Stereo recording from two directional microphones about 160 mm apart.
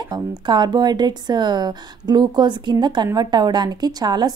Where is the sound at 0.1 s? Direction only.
25° right (ahead or behind).